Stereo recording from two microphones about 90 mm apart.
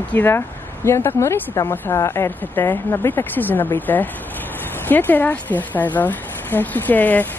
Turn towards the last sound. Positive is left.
turn(degrees=20)  # may be behind; listen again after turning